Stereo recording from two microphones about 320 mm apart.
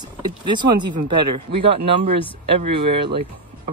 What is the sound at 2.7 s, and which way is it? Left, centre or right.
Speech, centre.